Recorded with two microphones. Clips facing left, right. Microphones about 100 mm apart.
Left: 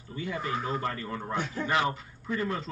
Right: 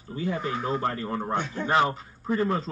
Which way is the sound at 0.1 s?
30° right (ahead or behind).